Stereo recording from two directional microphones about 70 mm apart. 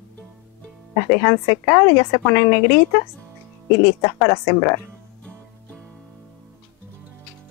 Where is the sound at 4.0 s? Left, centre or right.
Left.